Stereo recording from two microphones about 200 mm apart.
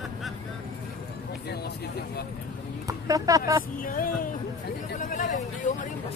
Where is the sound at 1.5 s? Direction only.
55° left (ahead or behind).